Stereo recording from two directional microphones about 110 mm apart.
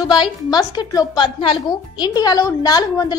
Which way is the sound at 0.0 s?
40° left (ahead or behind).